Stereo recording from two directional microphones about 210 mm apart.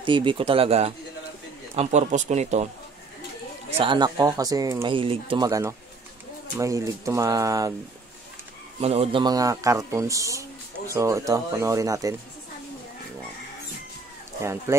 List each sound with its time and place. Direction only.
0.0 s speech: 25° right (ahead or behind)
3.8 s speech: 20° right (ahead or behind)
8.8 s speech: 30° right (ahead or behind)
14.4 s speech: 15° right (ahead or behind)